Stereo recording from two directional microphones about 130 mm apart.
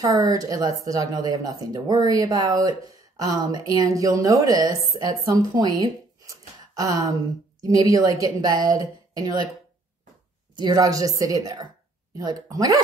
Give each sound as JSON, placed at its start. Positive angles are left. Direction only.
{"t": 0.0, "sound": "speech", "side_deg": -30}
{"t": 10.5, "sound": "speech", "side_deg": -30}